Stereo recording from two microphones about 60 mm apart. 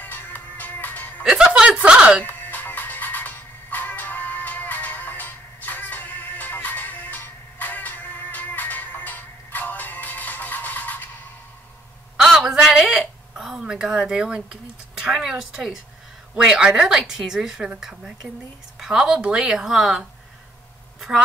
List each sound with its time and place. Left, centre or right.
0.0 s music: left
1.2 s music: centre
2.2 s music: left
12.4 s a sound: centre
16.3 s a woman's voice: centre